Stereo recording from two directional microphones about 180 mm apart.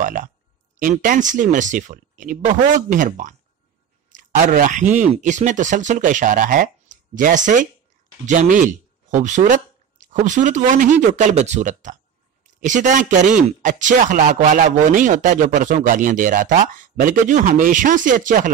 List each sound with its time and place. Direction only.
0.0 s speech: 50° right (ahead or behind)
4.1 s speech: 45° right (ahead or behind)